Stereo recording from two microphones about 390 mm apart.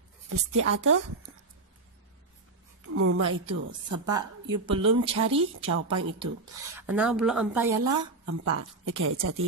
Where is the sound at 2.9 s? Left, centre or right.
Right.